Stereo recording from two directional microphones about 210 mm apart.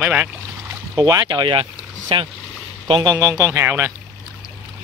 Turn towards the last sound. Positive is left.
turn(degrees=-10)  # may be behind; listen again after turning